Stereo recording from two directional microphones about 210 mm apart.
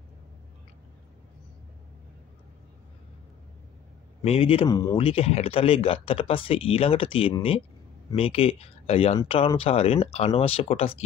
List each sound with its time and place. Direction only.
4.2 s speech: 30° left (ahead or behind)